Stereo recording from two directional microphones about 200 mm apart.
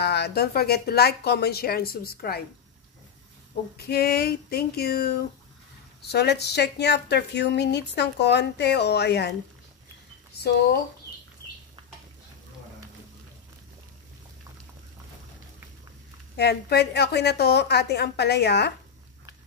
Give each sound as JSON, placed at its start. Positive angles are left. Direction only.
{"t": 0.0, "sound": "a woman's voice", "side_deg": 55}
{"t": 3.7, "sound": "a woman's voice", "side_deg": 55}
{"t": 16.3, "sound": "speech", "side_deg": 55}